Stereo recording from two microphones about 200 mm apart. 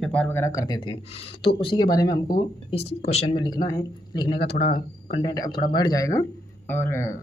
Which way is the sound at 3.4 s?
20° left (ahead or behind).